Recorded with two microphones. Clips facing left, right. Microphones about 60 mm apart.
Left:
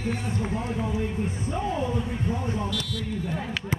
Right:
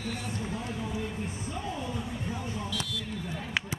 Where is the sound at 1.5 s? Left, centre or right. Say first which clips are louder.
Left 9 dB; left.